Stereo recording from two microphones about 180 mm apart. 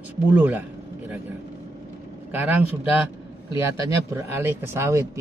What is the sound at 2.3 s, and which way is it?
Speech, 10° right (ahead or behind).